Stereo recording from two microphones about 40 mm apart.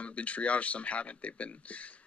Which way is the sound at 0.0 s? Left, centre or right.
Left.